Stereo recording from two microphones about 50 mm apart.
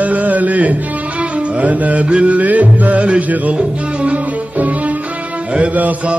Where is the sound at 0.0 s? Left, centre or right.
Right.